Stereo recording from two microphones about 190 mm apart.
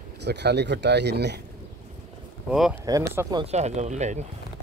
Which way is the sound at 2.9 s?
15° right (ahead or behind).